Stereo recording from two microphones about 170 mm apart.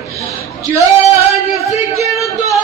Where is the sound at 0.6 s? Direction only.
15° right (ahead or behind).